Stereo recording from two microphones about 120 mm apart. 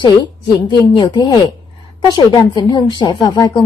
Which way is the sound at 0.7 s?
40° left (ahead or behind).